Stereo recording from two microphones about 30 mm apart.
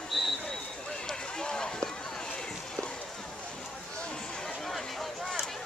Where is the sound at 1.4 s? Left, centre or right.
Left.